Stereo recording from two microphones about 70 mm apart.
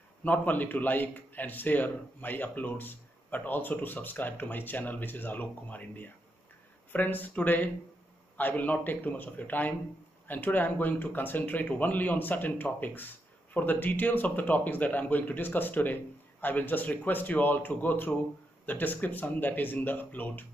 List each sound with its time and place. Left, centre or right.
0.2 s speech: left